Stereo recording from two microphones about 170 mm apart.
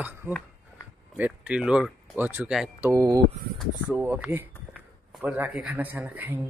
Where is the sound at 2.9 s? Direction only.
20° right (ahead or behind).